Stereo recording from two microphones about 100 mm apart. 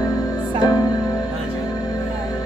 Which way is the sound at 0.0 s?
35° left (ahead or behind).